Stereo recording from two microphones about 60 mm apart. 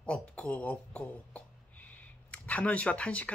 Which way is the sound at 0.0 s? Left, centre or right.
Centre.